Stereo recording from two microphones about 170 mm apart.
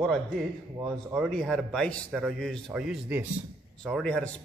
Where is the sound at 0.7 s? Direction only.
20° right (ahead or behind).